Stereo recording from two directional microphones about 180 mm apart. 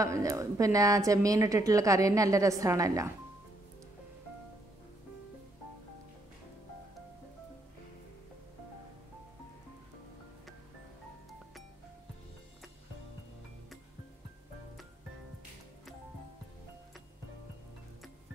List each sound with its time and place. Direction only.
0.0 s a woman's voice: 15° right (ahead or behind)